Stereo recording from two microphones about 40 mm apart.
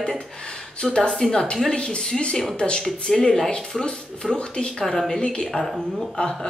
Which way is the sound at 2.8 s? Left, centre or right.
Centre.